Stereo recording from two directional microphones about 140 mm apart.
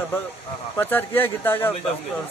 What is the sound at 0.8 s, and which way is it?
Speech, 15° left (ahead or behind).